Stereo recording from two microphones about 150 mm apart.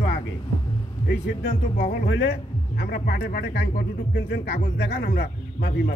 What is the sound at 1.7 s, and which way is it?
Speech, 75° left (ahead or behind).